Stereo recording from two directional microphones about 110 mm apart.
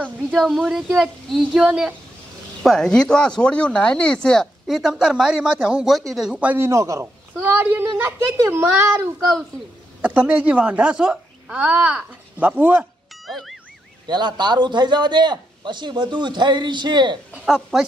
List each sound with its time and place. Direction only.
0.3 s a child's voice: centre (ahead or behind)
2.6 s speech: 5° left (ahead or behind); by 6.6 s 15° right (ahead or behind)
6.6 s a child's voice: 30° right (ahead or behind)
7.4 s a child's voice: 15° right (ahead or behind)
10.0 s a child's voice: 10° right (ahead or behind)
13.3 s ding: centre (ahead or behind)
14.0 s a man's voice: 40° right (ahead or behind)
17.3 s speech: 5° right (ahead or behind)